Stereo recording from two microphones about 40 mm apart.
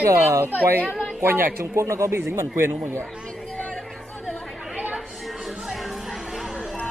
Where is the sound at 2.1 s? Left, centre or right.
Right.